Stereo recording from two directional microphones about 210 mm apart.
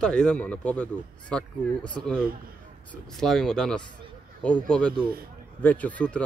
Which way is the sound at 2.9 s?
Centre (ahead or behind).